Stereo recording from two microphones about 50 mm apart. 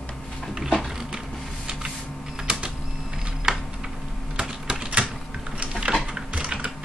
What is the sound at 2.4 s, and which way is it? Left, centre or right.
Printer, centre.